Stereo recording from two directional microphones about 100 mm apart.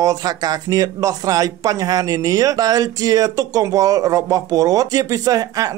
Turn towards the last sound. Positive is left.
turn(degrees=-40)  # may be behind; listen again after turning